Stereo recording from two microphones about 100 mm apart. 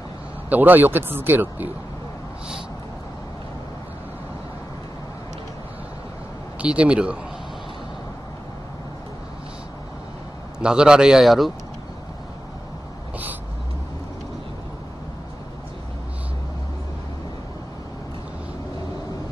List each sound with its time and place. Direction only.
0.5 s speech: 20° right (ahead or behind)
6.6 s a man's voice: 10° right (ahead or behind)
10.6 s a man's voice: 10° right (ahead or behind)